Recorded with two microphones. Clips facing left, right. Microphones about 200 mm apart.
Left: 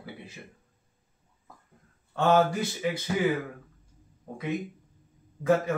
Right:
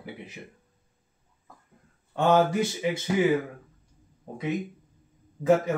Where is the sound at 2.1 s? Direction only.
15° right (ahead or behind).